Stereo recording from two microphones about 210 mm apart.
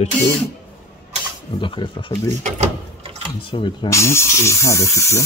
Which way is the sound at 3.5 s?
20° left (ahead or behind).